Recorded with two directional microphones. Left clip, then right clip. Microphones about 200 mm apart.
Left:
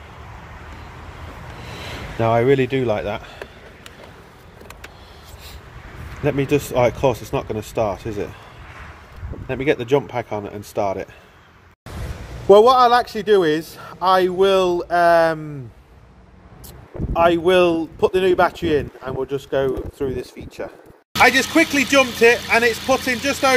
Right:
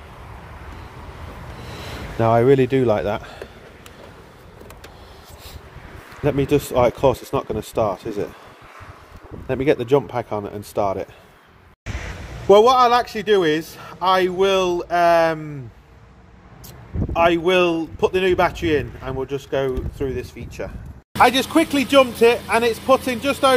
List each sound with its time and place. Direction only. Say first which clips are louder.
1.9 s speech: right 1 dB; 10° right (ahead or behind)
6.2 s speech: even; centre (ahead or behind)
9.5 s a man's voice: right 1 dB; 10° right (ahead or behind)
12.4 s speech: left 1 dB; centre (ahead or behind)
17.1 s speech: left 1 dB; centre (ahead or behind)